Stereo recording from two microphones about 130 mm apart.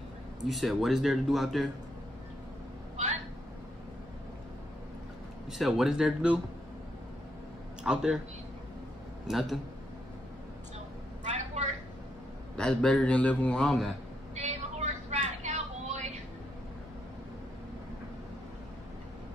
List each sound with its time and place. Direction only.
0.5 s speech: centre (ahead or behind)
5.5 s speech: 5° right (ahead or behind)
7.8 s a man's voice: 5° right (ahead or behind)
9.3 s speech: centre (ahead or behind)
11.2 s a sound: 65° right (ahead or behind)
12.5 s a man's voice: 5° left (ahead or behind)
14.3 s vehicle: 60° right (ahead or behind)